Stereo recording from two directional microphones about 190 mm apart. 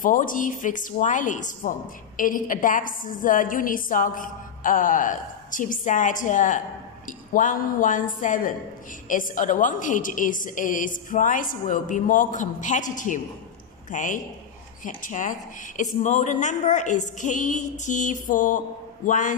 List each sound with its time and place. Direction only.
0.0 s a woman's voice: 45° left (ahead or behind)